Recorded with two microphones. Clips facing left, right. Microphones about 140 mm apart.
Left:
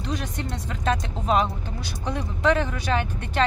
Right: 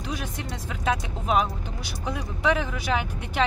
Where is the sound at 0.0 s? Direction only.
5° right (ahead or behind).